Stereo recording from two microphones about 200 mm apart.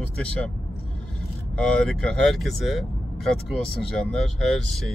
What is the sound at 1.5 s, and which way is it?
Speech, 5° left (ahead or behind).